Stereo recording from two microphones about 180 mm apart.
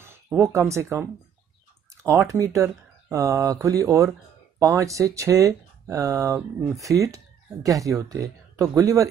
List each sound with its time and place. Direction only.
0.0 s speech: 15° right (ahead or behind)
2.0 s speech: 15° right (ahead or behind)